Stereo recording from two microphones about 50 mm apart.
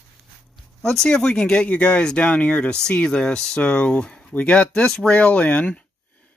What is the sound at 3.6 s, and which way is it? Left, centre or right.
Speech, left.